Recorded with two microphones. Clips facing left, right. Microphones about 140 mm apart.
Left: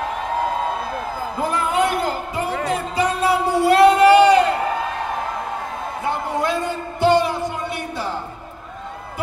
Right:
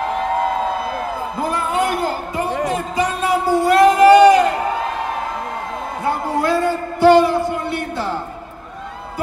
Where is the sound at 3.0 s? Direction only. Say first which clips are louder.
Even; 35° left (ahead or behind).